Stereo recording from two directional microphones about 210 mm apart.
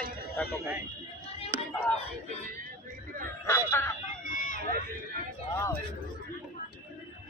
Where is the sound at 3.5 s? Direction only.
10° left (ahead or behind).